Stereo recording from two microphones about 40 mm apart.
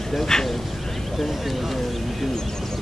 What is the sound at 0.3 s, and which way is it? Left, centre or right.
Speech, centre.